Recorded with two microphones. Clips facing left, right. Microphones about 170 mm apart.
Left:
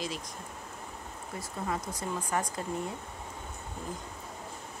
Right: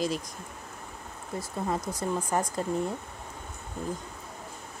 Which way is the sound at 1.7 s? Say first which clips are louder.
Right 4 dB; 30° right (ahead or behind).